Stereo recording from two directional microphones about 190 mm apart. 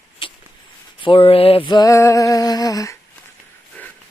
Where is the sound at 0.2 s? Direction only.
25° left (ahead or behind); by 3.9 s 10° left (ahead or behind).